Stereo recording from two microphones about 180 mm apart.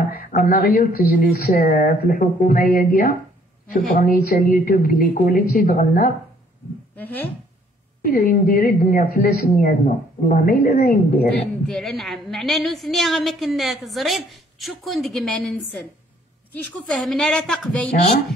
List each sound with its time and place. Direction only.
0.1 s a woman's voice: 55° left (ahead or behind)
7.0 s speech: 10° left (ahead or behind)
8.0 s speech: 55° left (ahead or behind)
11.6 s a woman's voice: centre (ahead or behind)
16.8 s a woman's voice: centre (ahead or behind)